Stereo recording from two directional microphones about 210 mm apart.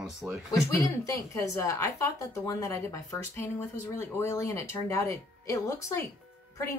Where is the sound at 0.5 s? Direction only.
15° left (ahead or behind).